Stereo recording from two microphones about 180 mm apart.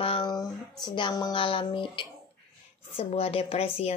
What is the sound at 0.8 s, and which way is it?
A woman's voice, 25° left (ahead or behind).